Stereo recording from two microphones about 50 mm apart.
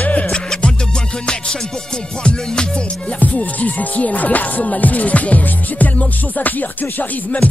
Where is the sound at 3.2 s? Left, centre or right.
Left.